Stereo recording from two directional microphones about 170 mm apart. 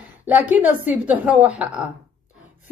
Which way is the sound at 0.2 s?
10° right (ahead or behind).